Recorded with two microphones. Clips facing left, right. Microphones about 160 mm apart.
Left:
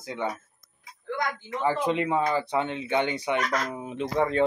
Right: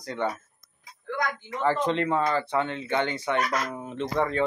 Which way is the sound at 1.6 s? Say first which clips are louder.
Right 1 dB; 10° left (ahead or behind).